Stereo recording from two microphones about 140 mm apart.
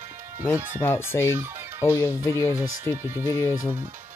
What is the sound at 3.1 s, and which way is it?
Speech, 20° right (ahead or behind).